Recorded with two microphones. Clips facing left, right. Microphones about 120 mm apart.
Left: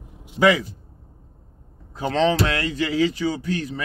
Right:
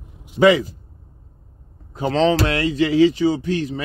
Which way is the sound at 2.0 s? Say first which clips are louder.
Right 3 dB; 35° right (ahead or behind).